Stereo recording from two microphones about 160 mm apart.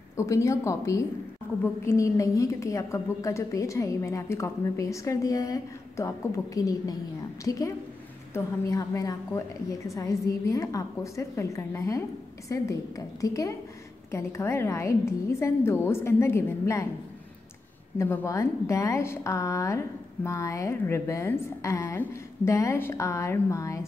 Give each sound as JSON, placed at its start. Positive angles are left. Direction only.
{"t": 0.1, "sound": "a woman's voice", "side_deg": 20}
{"t": 17.9, "sound": "a woman's voice", "side_deg": 15}